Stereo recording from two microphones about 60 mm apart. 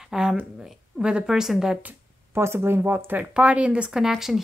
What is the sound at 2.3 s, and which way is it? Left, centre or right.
Speech, right.